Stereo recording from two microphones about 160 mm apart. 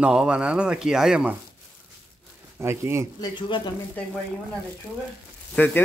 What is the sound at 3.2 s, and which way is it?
Speech, 30° left (ahead or behind).